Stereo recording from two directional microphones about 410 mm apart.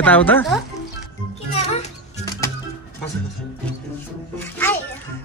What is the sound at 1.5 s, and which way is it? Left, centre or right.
Music, centre.